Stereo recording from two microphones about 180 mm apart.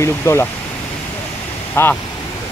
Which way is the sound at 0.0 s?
15° left (ahead or behind).